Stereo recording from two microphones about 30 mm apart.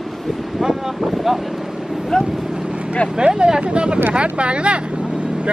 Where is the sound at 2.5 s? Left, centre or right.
Right.